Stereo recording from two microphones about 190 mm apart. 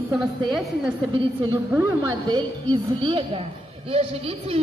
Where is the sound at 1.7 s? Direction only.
15° right (ahead or behind).